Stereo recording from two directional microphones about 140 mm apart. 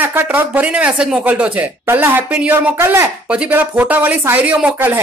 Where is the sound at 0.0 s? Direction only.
15° right (ahead or behind).